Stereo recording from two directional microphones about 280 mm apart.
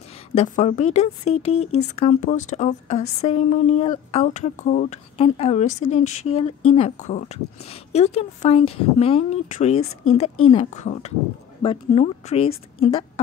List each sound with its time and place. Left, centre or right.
0.4 s speech: left